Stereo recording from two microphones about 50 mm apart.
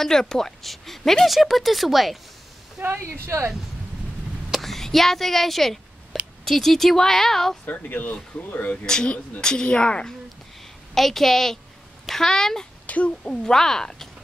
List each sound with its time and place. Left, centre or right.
0.0 s speech: centre
3.0 s speech: right
4.5 s a woman's voice: centre
7.6 s speech: left
8.8 s a woman's voice: centre
11.0 s a woman's voice: centre
12.8 s speech: left
13.5 s a woman's voice: centre